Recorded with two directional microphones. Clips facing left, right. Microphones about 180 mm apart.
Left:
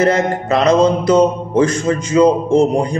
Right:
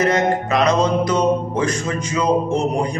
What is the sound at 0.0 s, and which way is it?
A man's voice, 30° left (ahead or behind).